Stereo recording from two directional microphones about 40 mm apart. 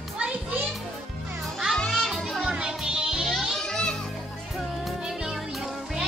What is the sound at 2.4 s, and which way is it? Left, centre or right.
Music, right.